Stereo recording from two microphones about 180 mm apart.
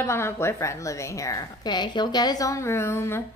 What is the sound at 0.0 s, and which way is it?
A woman's voice, 15° left (ahead or behind).